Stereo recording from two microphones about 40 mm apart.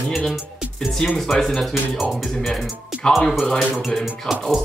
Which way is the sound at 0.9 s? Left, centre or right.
Centre.